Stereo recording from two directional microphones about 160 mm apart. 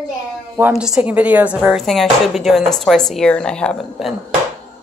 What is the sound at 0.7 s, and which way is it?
Speech, 5° right (ahead or behind).